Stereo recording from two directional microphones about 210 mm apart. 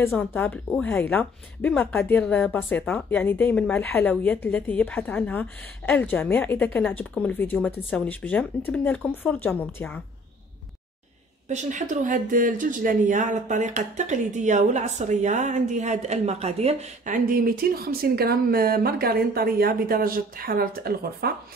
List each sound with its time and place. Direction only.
0.0 s speech: 10° left (ahead or behind)
11.4 s speech: 35° right (ahead or behind)